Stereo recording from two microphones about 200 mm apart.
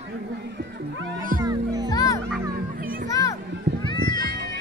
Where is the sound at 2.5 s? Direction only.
45° right (ahead or behind).